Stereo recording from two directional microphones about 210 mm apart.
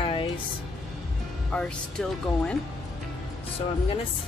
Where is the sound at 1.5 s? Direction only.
5° left (ahead or behind).